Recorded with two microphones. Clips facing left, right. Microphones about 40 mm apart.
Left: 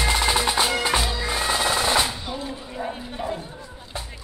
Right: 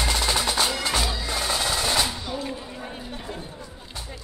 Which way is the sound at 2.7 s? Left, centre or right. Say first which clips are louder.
Left 5 dB; centre.